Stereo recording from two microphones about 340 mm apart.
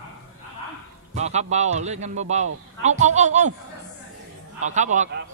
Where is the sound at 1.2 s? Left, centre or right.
Centre.